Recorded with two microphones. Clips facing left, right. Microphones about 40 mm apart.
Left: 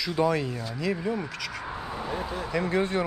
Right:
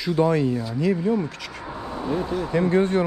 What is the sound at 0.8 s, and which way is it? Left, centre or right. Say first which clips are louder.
Speech: right 6 dB; left.